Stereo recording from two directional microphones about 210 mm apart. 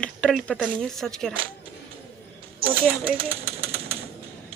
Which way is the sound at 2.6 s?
45° right (ahead or behind).